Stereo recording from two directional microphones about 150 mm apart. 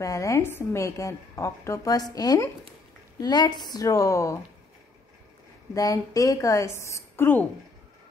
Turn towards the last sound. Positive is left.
turn(degrees=15)  # may be behind; listen again after turning